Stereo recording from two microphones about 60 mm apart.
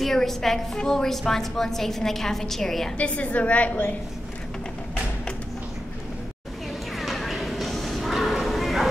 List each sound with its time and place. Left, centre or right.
0.0 s a woman's voice: centre
3.0 s a woman's voice: left
7.0 s bow-wow: centre